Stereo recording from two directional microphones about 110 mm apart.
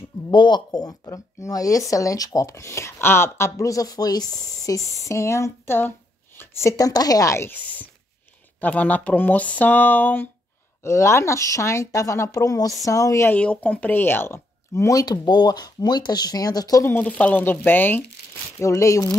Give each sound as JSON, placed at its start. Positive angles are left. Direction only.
{"t": 0.3, "sound": "speech", "side_deg": 45}
{"t": 6.8, "sound": "speech", "side_deg": 35}
{"t": 13.3, "sound": "speech", "side_deg": 15}
{"t": 16.8, "sound": "speech", "side_deg": 15}